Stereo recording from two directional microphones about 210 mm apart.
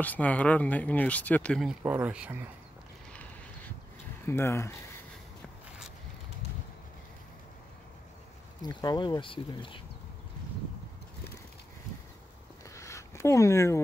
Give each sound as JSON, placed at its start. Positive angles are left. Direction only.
{"t": 0.0, "sound": "speech", "side_deg": 5}
{"t": 4.3, "sound": "speech", "side_deg": 10}
{"t": 8.6, "sound": "speech", "side_deg": 20}
{"t": 12.6, "sound": "a sound", "side_deg": 15}